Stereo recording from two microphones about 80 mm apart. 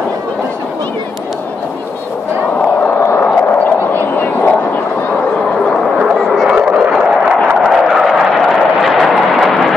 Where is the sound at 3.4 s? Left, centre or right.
Left.